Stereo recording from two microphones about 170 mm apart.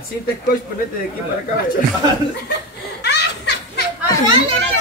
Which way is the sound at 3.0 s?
85° left.